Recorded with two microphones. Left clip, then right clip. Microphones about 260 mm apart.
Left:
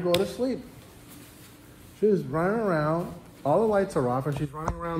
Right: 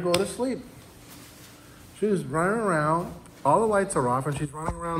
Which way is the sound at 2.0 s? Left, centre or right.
Right.